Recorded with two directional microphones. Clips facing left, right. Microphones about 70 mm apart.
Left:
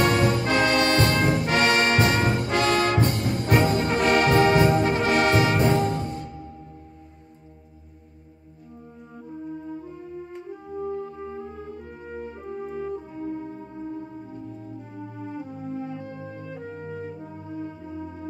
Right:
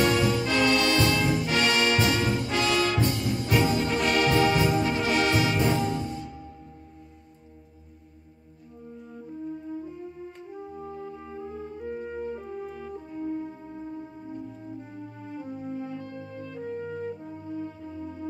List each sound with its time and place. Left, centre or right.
0.0 s brass instrument: left
0.5 s brass instrument: left
0.7 s brass instrument: left
11.1 s music: centre
11.8 s music: centre
15.4 s music: centre
15.8 s music: centre